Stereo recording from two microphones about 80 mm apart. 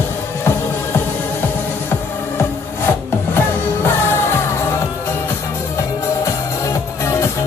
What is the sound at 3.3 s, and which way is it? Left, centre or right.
Music, left.